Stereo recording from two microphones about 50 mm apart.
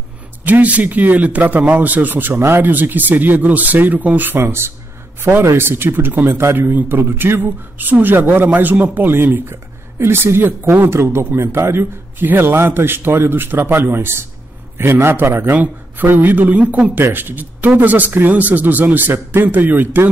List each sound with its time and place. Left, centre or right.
0.5 s a man's voice: right
9.1 s a man's voice: right
15.5 s speech: right
16.9 s speech: right